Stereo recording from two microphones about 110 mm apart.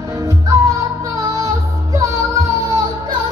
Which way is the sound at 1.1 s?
30° right (ahead or behind).